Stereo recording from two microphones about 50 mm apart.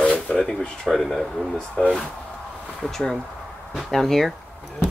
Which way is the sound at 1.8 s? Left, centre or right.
Centre.